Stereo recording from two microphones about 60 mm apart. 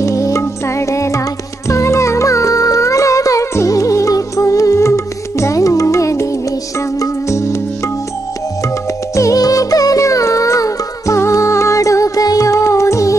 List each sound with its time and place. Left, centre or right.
0.0 s music: left
9.1 s music: left